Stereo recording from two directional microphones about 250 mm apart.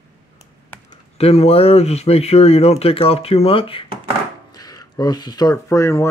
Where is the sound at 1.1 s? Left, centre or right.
Left.